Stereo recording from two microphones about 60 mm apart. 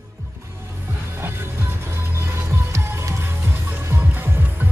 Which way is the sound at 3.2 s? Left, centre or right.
Right.